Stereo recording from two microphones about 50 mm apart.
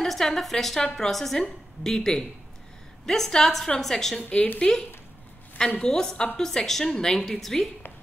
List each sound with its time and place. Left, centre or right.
0.0 s a woman's voice: centre
4.2 s a woman's voice: left
4.6 s a woman's voice: centre